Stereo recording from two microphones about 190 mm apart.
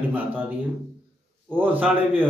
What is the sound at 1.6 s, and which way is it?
Speech, 10° right (ahead or behind).